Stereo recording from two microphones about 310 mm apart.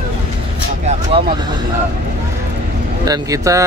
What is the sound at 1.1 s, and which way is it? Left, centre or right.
Speech, centre.